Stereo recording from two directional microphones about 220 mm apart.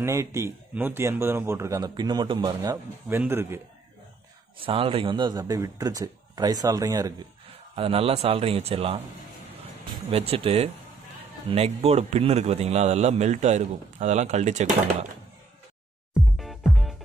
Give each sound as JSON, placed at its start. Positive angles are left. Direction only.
{"t": 0.0, "sound": "speech", "side_deg": -10}
{"t": 4.6, "sound": "a man's voice", "side_deg": -25}
{"t": 10.1, "sound": "a man's voice", "side_deg": -25}
{"t": 16.1, "sound": "music", "side_deg": 0}